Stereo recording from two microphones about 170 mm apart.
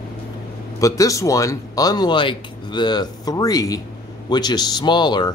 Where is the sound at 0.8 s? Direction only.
20° left (ahead or behind).